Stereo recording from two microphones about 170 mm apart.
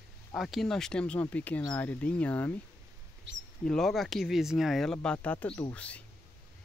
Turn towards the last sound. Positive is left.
turn(degrees=10)  # may be behind; listen again after turning